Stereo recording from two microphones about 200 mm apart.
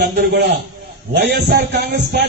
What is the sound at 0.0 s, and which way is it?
A man's voice, 55° right (ahead or behind).